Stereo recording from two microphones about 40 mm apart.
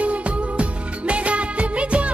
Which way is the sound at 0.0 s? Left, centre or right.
Right.